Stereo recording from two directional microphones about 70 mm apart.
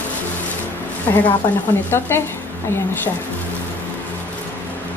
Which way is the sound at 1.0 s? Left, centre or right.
Left.